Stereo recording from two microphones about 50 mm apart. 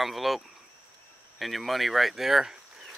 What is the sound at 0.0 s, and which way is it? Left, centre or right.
Speech, centre.